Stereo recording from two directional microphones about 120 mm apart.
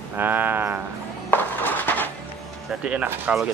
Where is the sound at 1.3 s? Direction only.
15° left (ahead or behind).